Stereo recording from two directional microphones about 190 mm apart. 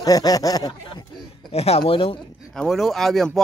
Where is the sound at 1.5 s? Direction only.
35° left (ahead or behind).